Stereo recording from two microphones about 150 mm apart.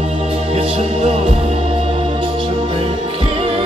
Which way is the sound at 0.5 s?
45° right (ahead or behind).